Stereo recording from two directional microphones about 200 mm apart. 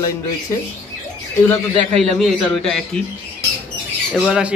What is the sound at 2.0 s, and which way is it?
Speech, centre (ahead or behind).